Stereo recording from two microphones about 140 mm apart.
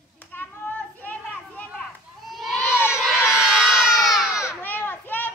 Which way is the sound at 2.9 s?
Centre (ahead or behind).